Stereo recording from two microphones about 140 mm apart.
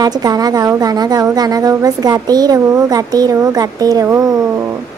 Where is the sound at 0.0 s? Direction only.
25° right (ahead or behind).